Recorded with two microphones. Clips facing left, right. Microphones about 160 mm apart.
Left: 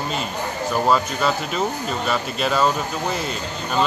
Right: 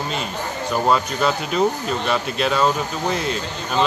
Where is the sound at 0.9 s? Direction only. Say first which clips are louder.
Right 1 dB; centre (ahead or behind).